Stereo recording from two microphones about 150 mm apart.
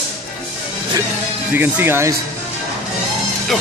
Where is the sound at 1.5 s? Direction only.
15° right (ahead or behind).